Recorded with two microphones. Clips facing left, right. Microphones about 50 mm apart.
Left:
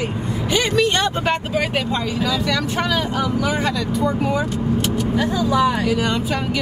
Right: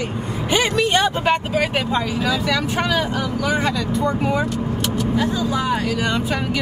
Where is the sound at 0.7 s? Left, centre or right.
Centre.